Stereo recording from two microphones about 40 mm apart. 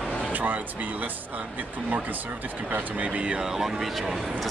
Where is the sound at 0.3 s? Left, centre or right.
Right.